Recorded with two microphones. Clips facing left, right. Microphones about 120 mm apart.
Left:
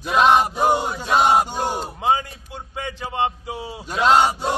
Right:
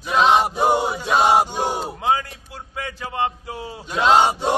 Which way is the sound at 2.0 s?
20° left (ahead or behind).